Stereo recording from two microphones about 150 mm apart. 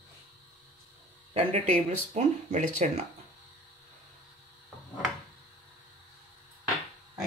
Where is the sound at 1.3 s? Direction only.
50° right (ahead or behind).